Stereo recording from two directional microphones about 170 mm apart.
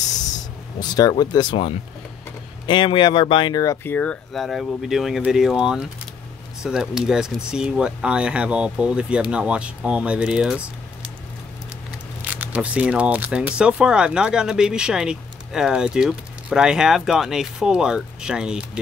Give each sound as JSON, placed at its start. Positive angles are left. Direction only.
{"t": 0.7, "sound": "speech", "side_deg": 25}
{"t": 12.2, "sound": "speech", "side_deg": -10}